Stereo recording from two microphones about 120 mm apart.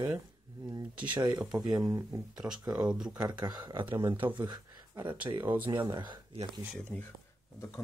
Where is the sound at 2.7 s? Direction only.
10° right (ahead or behind).